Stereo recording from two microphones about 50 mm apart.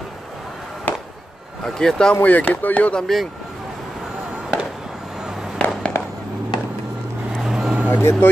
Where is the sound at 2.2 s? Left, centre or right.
Left.